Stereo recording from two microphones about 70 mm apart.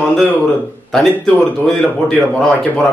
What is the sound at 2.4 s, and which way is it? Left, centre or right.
Speech, centre.